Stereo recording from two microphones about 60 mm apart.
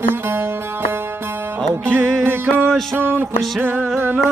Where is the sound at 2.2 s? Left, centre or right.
Right.